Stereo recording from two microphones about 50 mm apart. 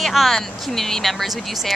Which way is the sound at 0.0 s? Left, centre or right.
Centre.